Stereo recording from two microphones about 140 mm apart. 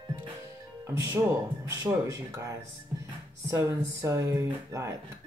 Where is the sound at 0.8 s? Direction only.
25° right (ahead or behind).